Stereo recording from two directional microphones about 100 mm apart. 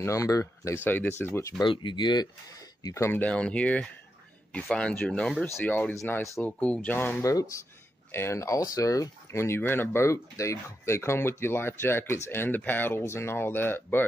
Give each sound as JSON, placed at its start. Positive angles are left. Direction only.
{"t": 0.0, "sound": "speech", "side_deg": 30}
{"t": 0.8, "sound": "speech", "side_deg": 20}
{"t": 1.6, "sound": "speech", "side_deg": 50}
{"t": 7.2, "sound": "speech", "side_deg": 35}